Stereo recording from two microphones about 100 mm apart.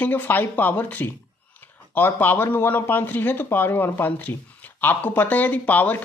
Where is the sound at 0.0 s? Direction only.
15° left (ahead or behind).